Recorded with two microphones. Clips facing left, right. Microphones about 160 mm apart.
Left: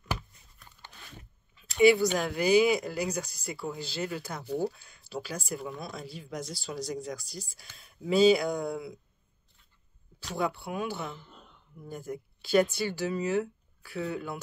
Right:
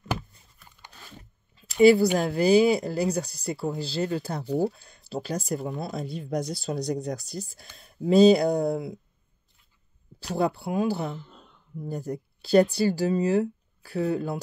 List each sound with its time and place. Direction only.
0.6 s a sound: centre (ahead or behind)
1.8 s speech: 35° right (ahead or behind)
6.7 s speech: 50° right (ahead or behind)
7.7 s speech: 35° right (ahead or behind)
10.2 s speech: 35° right (ahead or behind)